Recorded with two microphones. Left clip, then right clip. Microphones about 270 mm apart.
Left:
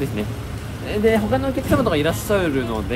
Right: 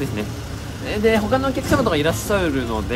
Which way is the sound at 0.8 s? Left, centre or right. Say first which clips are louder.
Even; centre.